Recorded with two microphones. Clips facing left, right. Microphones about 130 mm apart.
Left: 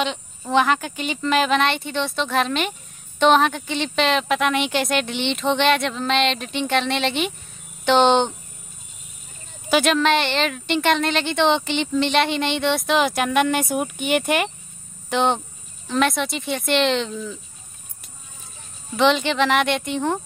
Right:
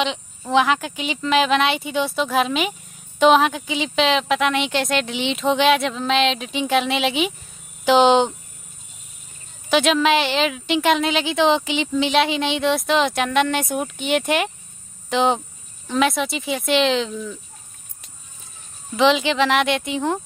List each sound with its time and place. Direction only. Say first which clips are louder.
0.0 s speech: right 1 dB; centre (ahead or behind)
9.7 s speech: right 1 dB; centre (ahead or behind)
18.9 s speech: right 1 dB; centre (ahead or behind)